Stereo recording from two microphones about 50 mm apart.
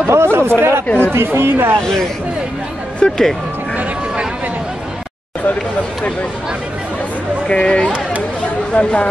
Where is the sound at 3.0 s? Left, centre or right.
Centre.